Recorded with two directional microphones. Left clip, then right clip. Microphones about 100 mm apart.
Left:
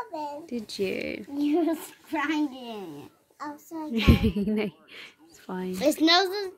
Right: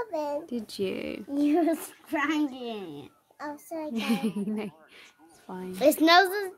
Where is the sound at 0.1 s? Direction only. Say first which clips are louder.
Right 4 dB; 80° right.